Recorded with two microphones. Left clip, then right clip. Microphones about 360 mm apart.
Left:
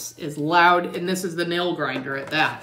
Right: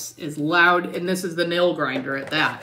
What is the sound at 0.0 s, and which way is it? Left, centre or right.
Speech, centre.